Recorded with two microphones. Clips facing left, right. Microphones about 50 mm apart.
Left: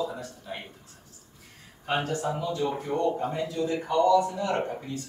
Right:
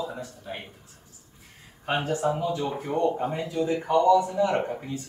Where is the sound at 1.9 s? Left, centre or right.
Centre.